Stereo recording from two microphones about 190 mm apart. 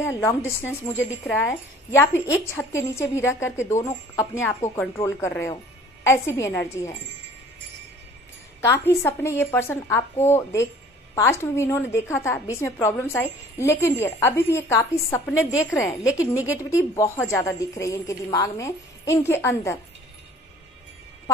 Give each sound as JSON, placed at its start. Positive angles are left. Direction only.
{"t": 0.0, "sound": "a woman's voice", "side_deg": 15}
{"t": 8.5, "sound": "a woman's voice", "side_deg": 15}
{"t": 16.2, "sound": "a woman's voice", "side_deg": -10}
{"t": 16.7, "sound": "a woman's voice", "side_deg": 15}